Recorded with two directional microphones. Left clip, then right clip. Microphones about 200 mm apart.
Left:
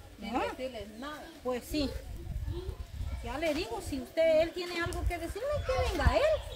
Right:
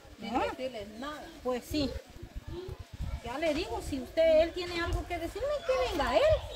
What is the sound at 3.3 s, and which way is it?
A woman's voice, 10° left (ahead or behind).